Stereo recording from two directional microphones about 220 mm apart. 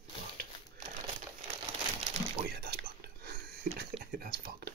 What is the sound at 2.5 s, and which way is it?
Whispering, 50° right (ahead or behind).